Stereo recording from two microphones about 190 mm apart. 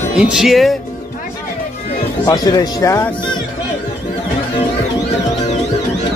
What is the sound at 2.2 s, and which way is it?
Speech, 20° left (ahead or behind).